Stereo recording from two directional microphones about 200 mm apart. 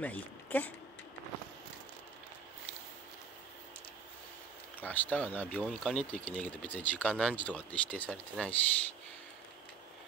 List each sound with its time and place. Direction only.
0.0 s speech: 10° left (ahead or behind)
4.7 s speech: 10° left (ahead or behind)